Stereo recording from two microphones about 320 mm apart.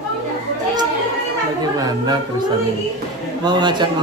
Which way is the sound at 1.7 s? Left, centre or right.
Centre.